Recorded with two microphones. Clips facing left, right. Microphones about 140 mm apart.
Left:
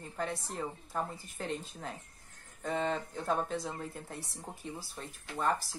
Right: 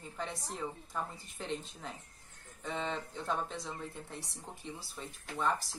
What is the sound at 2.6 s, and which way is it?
Speech, 45° left (ahead or behind).